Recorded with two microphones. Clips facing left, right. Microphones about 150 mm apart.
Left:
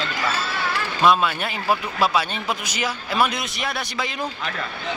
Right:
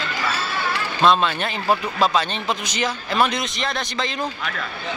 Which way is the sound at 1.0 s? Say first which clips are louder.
Right 1 dB; 10° left (ahead or behind).